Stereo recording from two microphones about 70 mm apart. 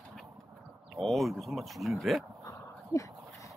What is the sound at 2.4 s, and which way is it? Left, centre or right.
Dog, left.